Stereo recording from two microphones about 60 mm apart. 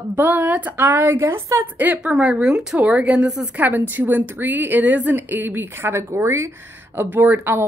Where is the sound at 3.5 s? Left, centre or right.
Right.